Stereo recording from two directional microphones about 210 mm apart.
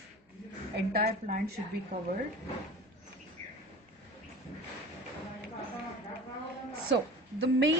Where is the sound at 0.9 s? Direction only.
45° right (ahead or behind).